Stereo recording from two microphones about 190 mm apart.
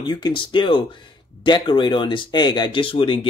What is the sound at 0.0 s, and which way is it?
Speech, 25° left (ahead or behind).